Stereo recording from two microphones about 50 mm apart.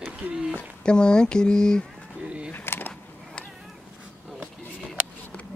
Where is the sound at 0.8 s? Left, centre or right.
Centre.